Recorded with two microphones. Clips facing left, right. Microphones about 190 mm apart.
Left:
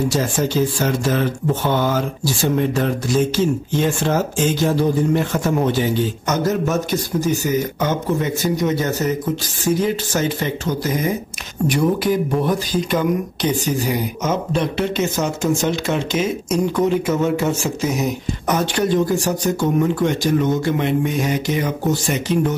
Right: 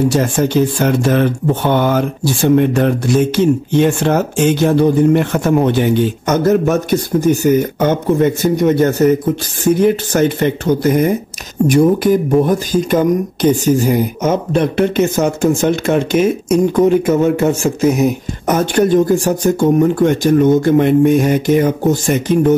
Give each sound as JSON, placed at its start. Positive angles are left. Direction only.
{"t": 0.1, "sound": "speech", "side_deg": -60}
{"t": 11.6, "sound": "speech", "side_deg": -45}